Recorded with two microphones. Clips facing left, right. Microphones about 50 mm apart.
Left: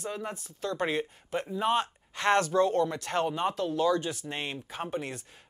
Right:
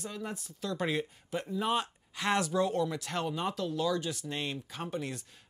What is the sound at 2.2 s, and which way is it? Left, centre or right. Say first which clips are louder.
Speech: left 5 dB; left.